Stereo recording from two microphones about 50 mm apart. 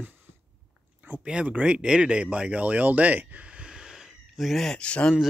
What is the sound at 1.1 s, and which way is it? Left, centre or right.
Speech, right.